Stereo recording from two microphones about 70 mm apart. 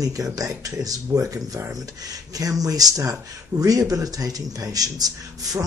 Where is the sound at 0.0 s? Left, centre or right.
Right.